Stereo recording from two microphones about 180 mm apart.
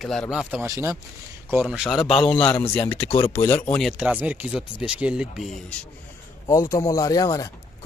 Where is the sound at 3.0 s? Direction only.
30° left (ahead or behind).